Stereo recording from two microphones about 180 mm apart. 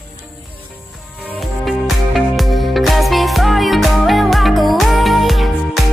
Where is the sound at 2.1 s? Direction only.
Centre (ahead or behind).